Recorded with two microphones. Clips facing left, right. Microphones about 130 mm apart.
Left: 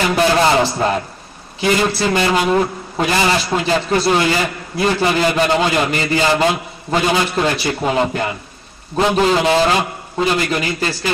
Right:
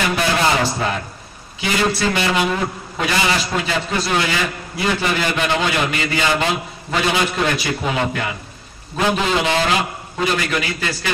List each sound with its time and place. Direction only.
0.1 s a man's voice: 35° left (ahead or behind)